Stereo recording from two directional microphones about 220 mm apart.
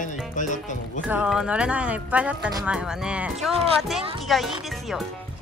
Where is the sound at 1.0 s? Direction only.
5° right (ahead or behind).